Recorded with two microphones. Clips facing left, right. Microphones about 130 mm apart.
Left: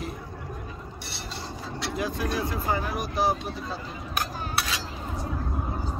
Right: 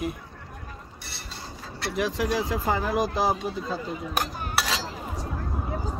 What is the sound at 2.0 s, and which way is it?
Speech, 90° right.